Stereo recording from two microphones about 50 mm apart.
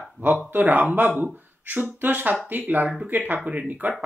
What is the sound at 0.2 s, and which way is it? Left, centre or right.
Speech, right.